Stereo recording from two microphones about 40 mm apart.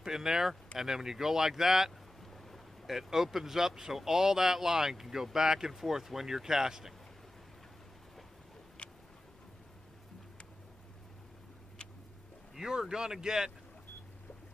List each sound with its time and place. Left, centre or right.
0.0 s speech: centre
2.3 s boat: centre
2.9 s speech: centre
12.5 s speech: centre